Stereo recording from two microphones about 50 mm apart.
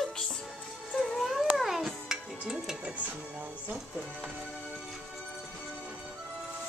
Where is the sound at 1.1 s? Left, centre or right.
Centre.